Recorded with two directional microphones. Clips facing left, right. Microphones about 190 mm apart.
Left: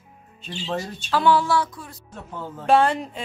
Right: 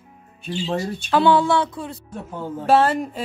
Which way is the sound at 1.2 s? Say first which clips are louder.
Right 3 dB; 25° right (ahead or behind).